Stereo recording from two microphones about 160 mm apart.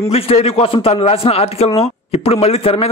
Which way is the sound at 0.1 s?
40° left (ahead or behind).